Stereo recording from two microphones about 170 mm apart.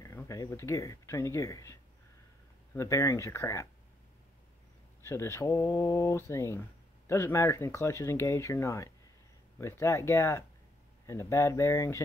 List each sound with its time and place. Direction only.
0.0 s speech: 20° left (ahead or behind)
5.0 s speech: 15° left (ahead or behind)